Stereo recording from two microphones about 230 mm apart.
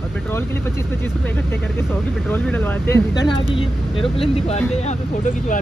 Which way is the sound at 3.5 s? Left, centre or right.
Left.